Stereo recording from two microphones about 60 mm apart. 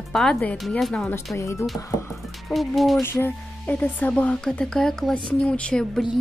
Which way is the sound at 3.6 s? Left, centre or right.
Left.